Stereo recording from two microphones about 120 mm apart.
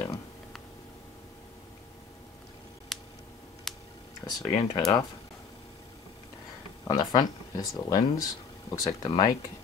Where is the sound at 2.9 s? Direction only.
Centre (ahead or behind).